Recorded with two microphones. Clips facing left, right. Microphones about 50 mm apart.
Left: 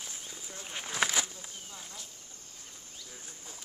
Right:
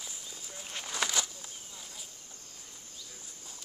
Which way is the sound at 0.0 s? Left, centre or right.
Left.